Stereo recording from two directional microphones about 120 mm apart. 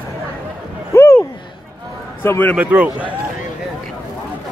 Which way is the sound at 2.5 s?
15° right (ahead or behind).